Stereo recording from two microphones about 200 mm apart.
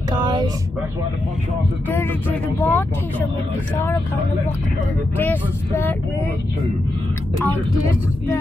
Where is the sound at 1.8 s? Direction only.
10° left (ahead or behind).